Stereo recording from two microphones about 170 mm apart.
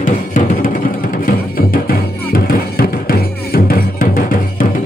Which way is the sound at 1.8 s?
60° left (ahead or behind).